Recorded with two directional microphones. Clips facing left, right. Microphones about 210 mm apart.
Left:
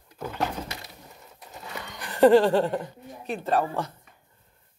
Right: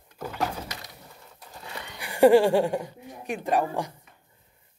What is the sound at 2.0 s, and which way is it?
Speech, 10° right (ahead or behind).